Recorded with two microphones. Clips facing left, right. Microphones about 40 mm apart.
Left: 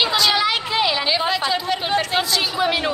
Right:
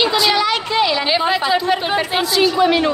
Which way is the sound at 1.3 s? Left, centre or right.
Centre.